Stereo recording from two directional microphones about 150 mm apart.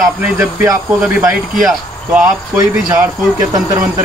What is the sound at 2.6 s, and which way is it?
Speech, 25° right (ahead or behind).